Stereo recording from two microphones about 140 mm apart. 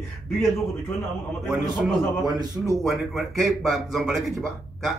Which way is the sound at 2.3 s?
30° right (ahead or behind).